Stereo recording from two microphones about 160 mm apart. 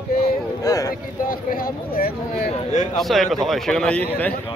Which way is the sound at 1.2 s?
60° left (ahead or behind).